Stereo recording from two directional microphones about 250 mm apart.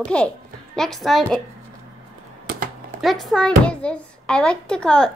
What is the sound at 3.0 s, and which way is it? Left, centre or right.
A child's voice, centre.